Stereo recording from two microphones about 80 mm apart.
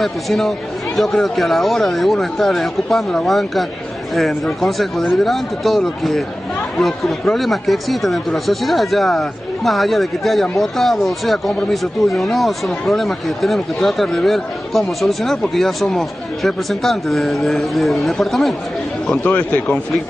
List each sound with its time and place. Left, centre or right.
0.0 s speech: centre
19.2 s speech: centre